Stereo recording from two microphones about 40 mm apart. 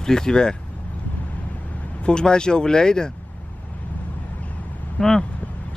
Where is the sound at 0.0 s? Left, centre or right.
Centre.